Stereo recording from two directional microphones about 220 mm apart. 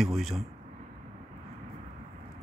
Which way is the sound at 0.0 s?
Centre (ahead or behind).